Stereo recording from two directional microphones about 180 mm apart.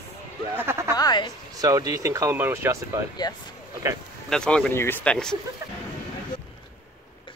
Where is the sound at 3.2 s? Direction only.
20° left (ahead or behind).